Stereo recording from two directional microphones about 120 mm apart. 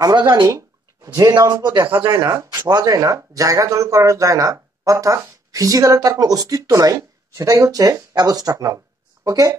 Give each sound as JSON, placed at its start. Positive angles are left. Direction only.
{"t": 0.0, "sound": "speech", "side_deg": -35}
{"t": 0.5, "sound": "speech", "side_deg": -25}